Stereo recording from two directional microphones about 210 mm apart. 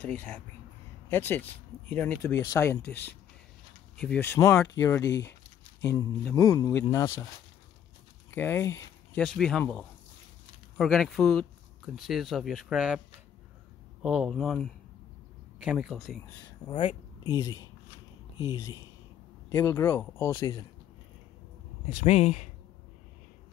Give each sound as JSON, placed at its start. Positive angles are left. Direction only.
{"t": 0.0, "sound": "speech", "side_deg": 10}
{"t": 3.9, "sound": "speech", "side_deg": 5}
{"t": 8.3, "sound": "speech", "side_deg": 10}
{"t": 9.2, "sound": "speech", "side_deg": 5}
{"t": 14.0, "sound": "speech", "side_deg": -5}
{"t": 16.8, "sound": "speech", "side_deg": 20}
{"t": 21.9, "sound": "speech", "side_deg": 35}